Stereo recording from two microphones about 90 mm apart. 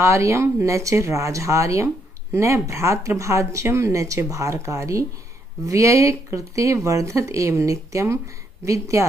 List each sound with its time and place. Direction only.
0.0 s speech: 35° right (ahead or behind)